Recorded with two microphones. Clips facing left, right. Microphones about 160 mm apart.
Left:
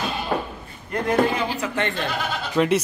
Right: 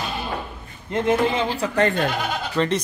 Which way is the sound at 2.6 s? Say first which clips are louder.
Left 3 dB; 10° left (ahead or behind).